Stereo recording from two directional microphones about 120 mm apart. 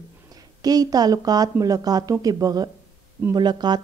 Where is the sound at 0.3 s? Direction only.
30° right (ahead or behind).